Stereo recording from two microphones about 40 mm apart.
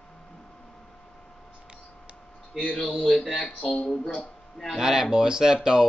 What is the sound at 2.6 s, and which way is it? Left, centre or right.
Speech, left.